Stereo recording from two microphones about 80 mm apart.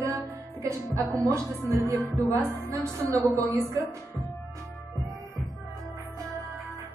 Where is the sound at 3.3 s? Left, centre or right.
Right.